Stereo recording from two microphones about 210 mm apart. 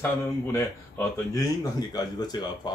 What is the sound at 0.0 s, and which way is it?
Speech, 10° left (ahead or behind).